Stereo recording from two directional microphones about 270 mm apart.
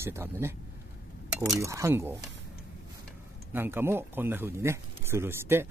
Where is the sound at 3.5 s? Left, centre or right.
Centre.